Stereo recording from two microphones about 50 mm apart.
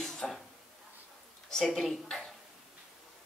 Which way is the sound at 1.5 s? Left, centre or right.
Centre.